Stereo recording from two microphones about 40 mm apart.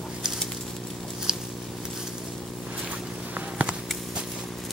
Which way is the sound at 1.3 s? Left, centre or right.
Centre.